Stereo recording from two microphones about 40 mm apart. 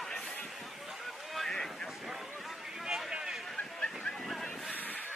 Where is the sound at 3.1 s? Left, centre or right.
Centre.